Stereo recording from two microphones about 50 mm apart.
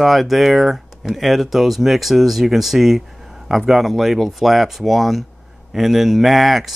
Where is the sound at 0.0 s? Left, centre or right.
Centre.